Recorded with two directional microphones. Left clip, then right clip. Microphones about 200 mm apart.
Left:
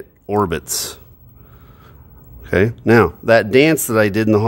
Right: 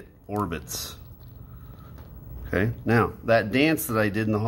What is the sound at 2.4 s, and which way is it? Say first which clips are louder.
Speech: left 11 dB; 50° left (ahead or behind).